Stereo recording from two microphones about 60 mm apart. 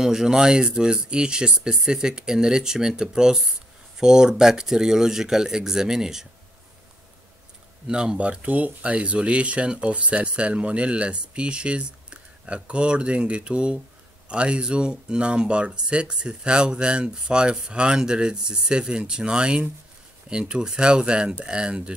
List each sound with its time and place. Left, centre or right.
0.0 s speech: centre
7.8 s speech: centre